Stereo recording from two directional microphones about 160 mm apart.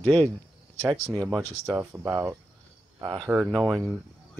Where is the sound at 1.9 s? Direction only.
20° right (ahead or behind).